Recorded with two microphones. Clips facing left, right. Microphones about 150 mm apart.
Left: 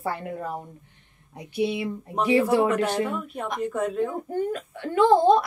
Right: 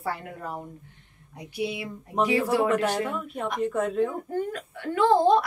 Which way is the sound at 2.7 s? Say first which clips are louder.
Left 1 dB; centre (ahead or behind).